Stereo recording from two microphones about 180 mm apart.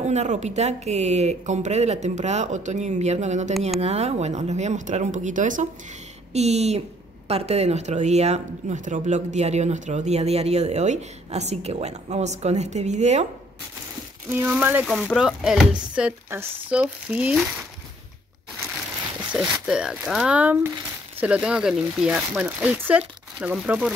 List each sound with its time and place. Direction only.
0.0 s speech: 40° right (ahead or behind)
14.3 s speech: 10° right (ahead or behind)
19.3 s speech: 5° right (ahead or behind)